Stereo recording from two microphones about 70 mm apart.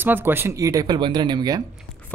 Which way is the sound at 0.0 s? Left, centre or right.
Right.